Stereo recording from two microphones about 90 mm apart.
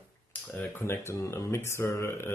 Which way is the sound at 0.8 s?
30° left (ahead or behind).